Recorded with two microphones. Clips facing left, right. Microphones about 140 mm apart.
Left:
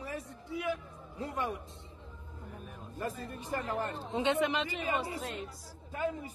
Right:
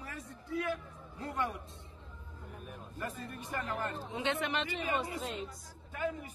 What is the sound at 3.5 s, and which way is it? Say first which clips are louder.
Speech: left 3 dB; 30° left (ahead or behind).